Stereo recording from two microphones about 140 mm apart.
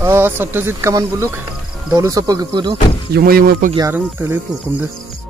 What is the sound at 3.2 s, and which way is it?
Speech, 90° right.